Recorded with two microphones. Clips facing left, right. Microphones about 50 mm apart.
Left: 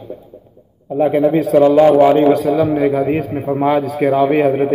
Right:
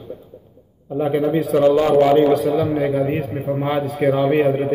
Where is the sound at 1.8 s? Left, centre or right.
Left.